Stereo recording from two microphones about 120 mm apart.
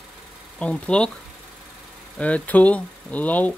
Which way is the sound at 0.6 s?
10° left (ahead or behind).